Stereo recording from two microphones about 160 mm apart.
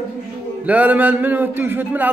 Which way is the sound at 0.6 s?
10° right (ahead or behind).